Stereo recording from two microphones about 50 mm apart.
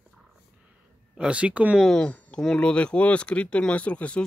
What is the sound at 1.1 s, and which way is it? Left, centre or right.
Speech, centre.